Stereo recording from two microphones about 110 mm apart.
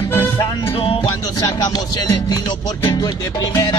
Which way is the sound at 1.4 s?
35° left (ahead or behind).